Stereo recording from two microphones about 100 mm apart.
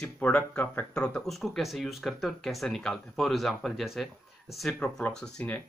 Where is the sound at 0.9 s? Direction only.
10° left (ahead or behind).